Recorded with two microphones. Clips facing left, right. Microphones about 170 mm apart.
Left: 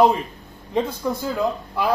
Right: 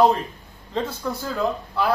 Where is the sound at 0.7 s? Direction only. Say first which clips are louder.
Left 4 dB; 15° left (ahead or behind).